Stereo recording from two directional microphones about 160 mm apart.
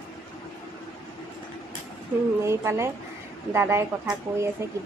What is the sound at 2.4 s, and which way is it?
Speech, 15° right (ahead or behind).